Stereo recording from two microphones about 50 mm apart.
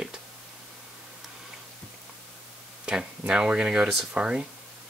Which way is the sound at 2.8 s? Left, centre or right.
Centre.